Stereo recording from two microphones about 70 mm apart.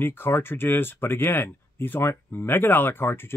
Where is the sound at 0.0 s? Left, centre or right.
Left.